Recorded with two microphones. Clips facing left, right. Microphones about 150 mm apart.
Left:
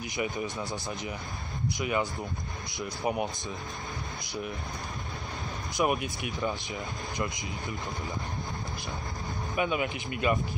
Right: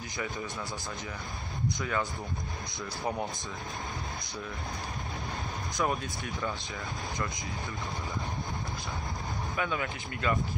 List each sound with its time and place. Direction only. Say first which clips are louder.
0.2 s speech: left 4 dB; 15° left (ahead or behind)
1.8 s speech: left 5 dB; 15° left (ahead or behind)
5.8 s speech: left 4 dB; 15° left (ahead or behind)
9.6 s speech: left 5 dB; 20° left (ahead or behind)